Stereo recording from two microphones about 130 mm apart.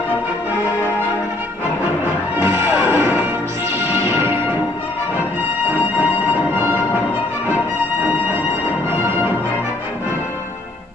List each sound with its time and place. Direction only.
2.4 s music: 20° right (ahead or behind)
5.7 s music: 15° right (ahead or behind)